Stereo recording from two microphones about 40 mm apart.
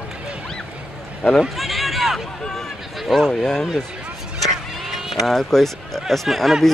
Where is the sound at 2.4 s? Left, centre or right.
Centre.